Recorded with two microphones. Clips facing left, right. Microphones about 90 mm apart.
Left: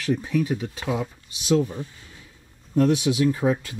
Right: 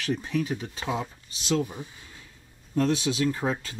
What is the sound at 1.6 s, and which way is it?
Speech, 15° right (ahead or behind).